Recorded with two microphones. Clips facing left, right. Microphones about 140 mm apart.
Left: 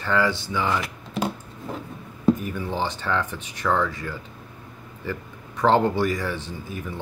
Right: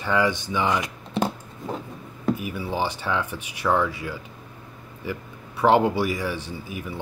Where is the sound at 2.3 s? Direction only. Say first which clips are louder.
Even; 10° right (ahead or behind).